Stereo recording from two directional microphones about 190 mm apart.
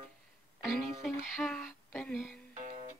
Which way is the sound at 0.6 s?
5° right (ahead or behind).